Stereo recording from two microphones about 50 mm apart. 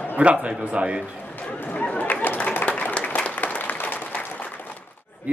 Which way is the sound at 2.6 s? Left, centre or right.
Left.